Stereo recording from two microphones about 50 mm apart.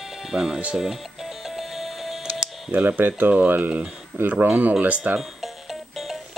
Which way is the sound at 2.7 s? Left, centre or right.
Right.